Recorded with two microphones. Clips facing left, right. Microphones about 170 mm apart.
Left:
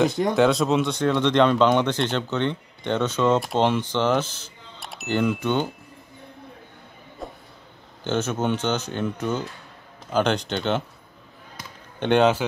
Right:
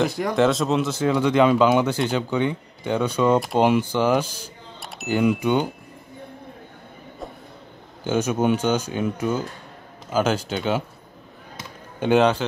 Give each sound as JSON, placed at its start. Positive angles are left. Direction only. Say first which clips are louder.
{"t": 0.1, "sound": "speech", "louder": "left 2 dB", "side_deg": 20}
{"t": 0.4, "sound": "speech", "louder": "even", "side_deg": 0}
{"t": 4.7, "sound": "speech", "louder": "right 1 dB", "side_deg": 0}
{"t": 7.2, "sound": "a sound", "louder": "even", "side_deg": 0}
{"t": 8.0, "sound": "speech", "louder": "right 3 dB", "side_deg": -10}
{"t": 12.0, "sound": "a man's voice", "louder": "right 1 dB", "side_deg": 0}